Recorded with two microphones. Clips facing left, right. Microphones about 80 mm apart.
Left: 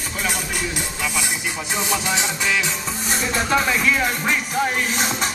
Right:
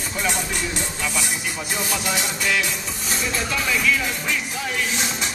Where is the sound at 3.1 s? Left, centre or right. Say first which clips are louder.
Left 5 dB; left.